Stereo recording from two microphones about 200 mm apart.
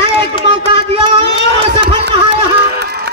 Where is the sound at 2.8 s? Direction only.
55° right (ahead or behind).